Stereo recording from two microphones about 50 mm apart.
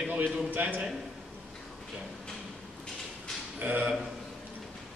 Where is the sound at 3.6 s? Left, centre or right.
Right.